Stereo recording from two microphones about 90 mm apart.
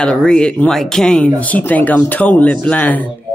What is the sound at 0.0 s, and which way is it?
Speech, 10° left (ahead or behind).